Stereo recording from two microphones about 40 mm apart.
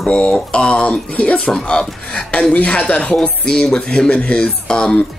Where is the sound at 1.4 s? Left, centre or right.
Centre.